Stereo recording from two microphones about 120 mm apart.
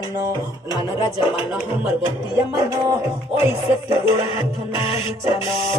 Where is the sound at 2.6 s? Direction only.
20° right (ahead or behind).